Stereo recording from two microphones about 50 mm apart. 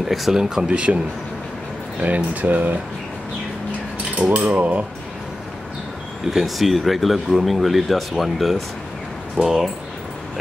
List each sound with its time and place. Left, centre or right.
0.1 s speech: centre; by 2.7 s right
4.6 s speech: right
6.3 s speech: centre